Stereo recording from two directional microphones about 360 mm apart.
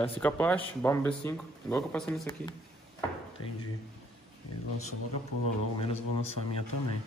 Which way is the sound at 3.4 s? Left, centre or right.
Left.